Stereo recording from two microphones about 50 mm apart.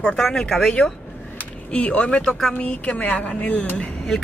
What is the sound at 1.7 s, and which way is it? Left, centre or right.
A woman's voice, left.